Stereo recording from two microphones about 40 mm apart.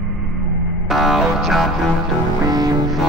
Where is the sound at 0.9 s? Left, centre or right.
Centre.